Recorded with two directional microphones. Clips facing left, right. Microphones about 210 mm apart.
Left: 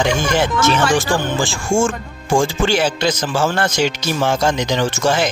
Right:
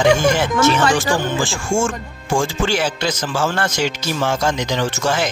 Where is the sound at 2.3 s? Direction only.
25° left (ahead or behind).